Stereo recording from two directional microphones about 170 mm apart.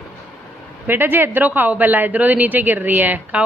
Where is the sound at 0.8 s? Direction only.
10° right (ahead or behind).